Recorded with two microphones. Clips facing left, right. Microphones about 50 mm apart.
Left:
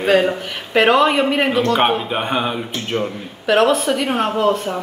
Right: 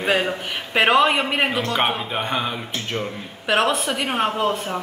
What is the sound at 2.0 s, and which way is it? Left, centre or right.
Speech, centre.